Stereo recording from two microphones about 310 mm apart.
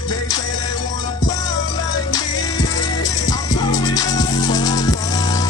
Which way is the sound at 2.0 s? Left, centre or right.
Centre.